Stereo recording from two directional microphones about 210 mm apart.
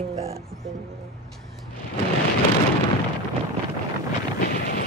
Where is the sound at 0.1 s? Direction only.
30° right (ahead or behind).